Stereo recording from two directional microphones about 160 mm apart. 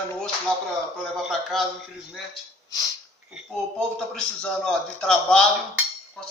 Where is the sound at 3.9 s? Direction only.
5° left (ahead or behind).